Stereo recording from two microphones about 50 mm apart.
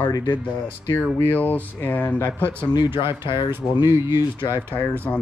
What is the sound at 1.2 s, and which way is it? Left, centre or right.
Speech, left.